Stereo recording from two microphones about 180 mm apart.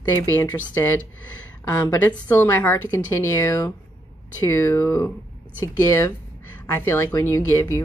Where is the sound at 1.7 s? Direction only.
10° left (ahead or behind).